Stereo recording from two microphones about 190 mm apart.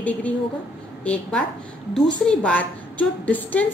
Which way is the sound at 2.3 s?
5° left (ahead or behind).